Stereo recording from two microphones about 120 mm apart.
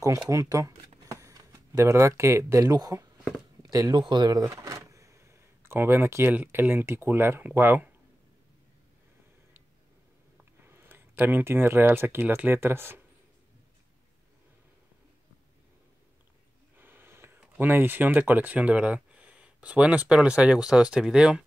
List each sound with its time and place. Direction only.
0.3 s speech: 25° right (ahead or behind)
10.7 s speech: 15° right (ahead or behind)
16.7 s a sound: 15° right (ahead or behind)
17.6 s speech: 15° right (ahead or behind)